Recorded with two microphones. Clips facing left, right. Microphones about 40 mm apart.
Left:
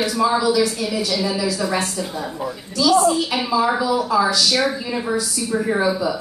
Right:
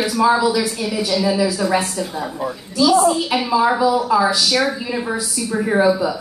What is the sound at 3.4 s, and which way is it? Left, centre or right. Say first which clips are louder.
Speech: right 3 dB; centre.